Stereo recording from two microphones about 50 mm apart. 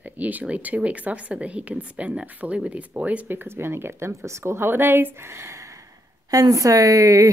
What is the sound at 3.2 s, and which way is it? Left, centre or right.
Speech, right.